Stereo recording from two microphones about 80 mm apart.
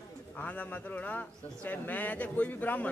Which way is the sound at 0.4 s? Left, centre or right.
Left.